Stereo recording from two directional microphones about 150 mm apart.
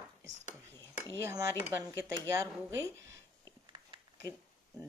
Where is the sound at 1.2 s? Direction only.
20° right (ahead or behind).